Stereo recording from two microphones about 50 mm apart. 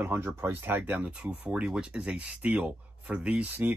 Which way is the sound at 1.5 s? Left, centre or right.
Right.